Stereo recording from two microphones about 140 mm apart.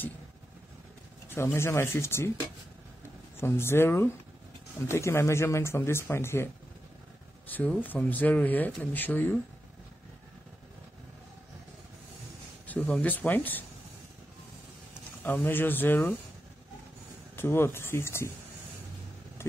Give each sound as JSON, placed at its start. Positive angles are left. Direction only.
{"t": 1.3, "sound": "speech", "side_deg": 15}
{"t": 3.3, "sound": "speech", "side_deg": 15}
{"t": 12.6, "sound": "speech", "side_deg": 10}
{"t": 15.2, "sound": "speech", "side_deg": 15}
{"t": 17.4, "sound": "speech", "side_deg": 15}